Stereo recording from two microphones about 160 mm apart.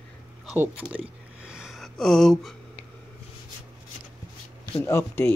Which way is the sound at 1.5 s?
5° right (ahead or behind).